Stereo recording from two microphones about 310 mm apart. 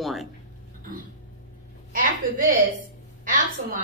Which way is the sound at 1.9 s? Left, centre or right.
Right.